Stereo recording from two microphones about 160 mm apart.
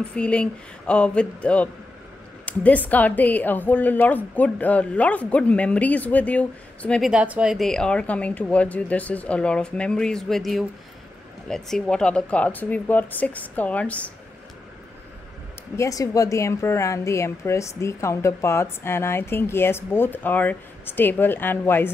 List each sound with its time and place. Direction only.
0.1 s speech: 5° left (ahead or behind)
7.1 s speech: 5° right (ahead or behind); by 14.1 s 10° left (ahead or behind)
15.7 s speech: 20° left (ahead or behind)